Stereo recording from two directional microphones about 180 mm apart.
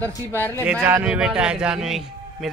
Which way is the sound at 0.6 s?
10° right (ahead or behind).